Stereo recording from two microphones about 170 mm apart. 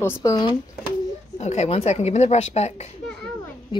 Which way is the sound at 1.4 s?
40° left (ahead or behind).